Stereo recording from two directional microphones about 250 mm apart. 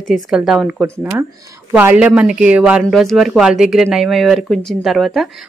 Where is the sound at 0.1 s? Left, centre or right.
Centre.